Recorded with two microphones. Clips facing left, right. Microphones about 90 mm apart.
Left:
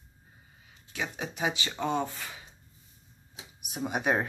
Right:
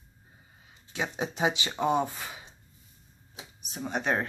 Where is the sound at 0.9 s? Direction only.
20° right (ahead or behind).